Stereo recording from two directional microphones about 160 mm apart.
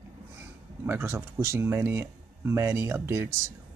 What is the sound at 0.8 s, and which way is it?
Speech, 15° right (ahead or behind).